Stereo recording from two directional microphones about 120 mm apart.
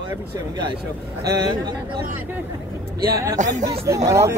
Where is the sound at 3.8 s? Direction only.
25° right (ahead or behind).